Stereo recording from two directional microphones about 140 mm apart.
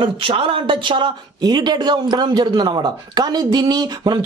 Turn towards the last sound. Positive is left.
turn(degrees=-30)  # may be behind; listen again after turning